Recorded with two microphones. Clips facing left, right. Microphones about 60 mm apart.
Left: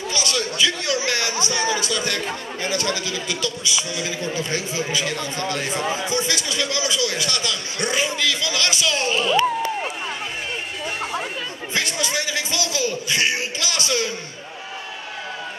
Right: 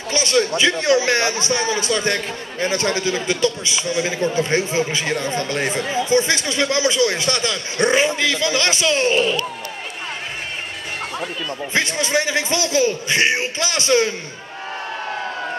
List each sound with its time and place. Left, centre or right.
0.1 s a man's voice: right
11.7 s a man's voice: right